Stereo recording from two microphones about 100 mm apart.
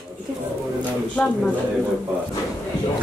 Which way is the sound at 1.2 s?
15° left (ahead or behind).